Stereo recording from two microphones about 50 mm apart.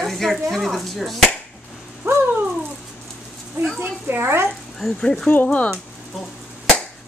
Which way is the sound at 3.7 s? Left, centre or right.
Right.